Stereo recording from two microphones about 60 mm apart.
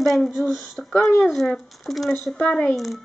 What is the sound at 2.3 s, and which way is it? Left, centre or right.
Speech, centre.